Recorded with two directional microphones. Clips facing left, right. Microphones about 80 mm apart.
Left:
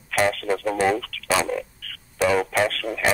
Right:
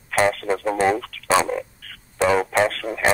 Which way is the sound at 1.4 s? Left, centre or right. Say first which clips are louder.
Right 2 dB; right.